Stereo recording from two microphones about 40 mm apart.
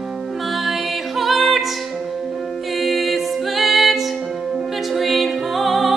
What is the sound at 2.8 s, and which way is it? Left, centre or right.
Music, centre.